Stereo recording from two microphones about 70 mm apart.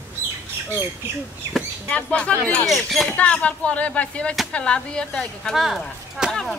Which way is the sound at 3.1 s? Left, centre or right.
Centre.